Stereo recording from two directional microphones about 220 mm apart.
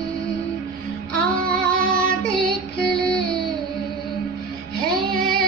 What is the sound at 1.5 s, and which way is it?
Music, 5° left (ahead or behind).